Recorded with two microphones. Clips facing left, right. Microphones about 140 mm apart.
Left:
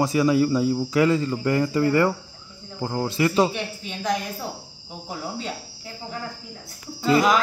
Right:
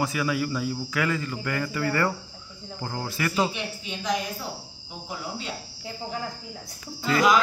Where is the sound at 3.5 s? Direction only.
45° left (ahead or behind).